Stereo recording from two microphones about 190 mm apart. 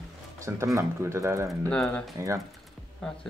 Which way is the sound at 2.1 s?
15° right (ahead or behind).